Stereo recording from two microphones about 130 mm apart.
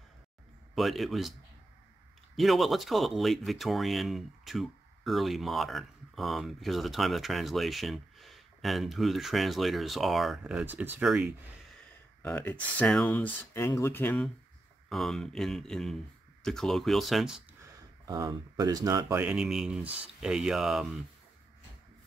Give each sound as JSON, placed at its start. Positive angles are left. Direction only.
{"t": 0.7, "sound": "speech", "side_deg": 0}
{"t": 2.3, "sound": "speech", "side_deg": 0}
{"t": 12.2, "sound": "speech", "side_deg": 15}
{"t": 14.9, "sound": "speech", "side_deg": 0}
{"t": 18.0, "sound": "speech", "side_deg": -30}
{"t": 19.2, "sound": "speech", "side_deg": -5}